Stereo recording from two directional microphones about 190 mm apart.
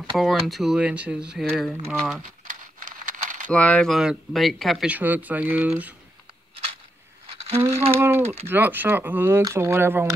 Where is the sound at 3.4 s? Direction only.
5° left (ahead or behind).